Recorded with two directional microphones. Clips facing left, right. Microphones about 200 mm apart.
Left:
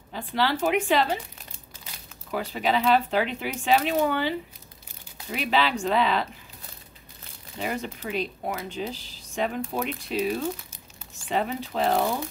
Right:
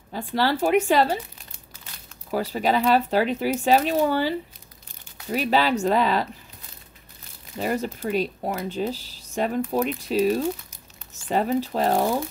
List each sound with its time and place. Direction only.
0.1 s speech: 40° right (ahead or behind)
2.3 s speech: 40° right (ahead or behind)
7.6 s speech: 40° right (ahead or behind)